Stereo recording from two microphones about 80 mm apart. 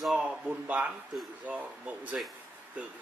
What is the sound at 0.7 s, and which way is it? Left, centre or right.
A man's voice, centre.